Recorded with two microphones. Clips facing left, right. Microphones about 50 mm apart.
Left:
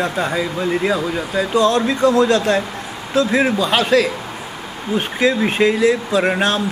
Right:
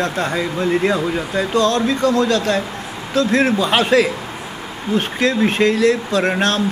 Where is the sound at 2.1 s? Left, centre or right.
Left.